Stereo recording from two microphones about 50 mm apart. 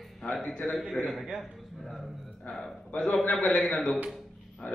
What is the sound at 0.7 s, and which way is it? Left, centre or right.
Speech, centre.